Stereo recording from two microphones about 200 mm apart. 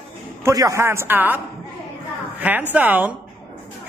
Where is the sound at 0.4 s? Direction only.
15° right (ahead or behind).